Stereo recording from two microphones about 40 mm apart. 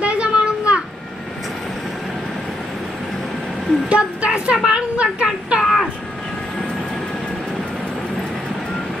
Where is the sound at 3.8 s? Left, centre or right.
Right.